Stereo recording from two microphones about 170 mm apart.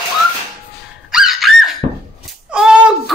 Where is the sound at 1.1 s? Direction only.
5° right (ahead or behind).